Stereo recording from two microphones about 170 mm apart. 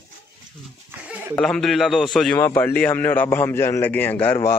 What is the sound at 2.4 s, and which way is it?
A man's voice, 15° left (ahead or behind).